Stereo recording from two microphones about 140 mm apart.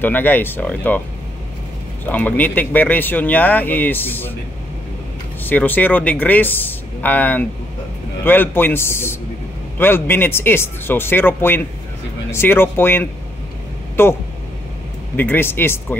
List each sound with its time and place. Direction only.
0.0 s speech: 15° left (ahead or behind)
2.0 s speech: 10° left (ahead or behind)
5.4 s speech: 15° left (ahead or behind)
15.1 s speech: 15° left (ahead or behind)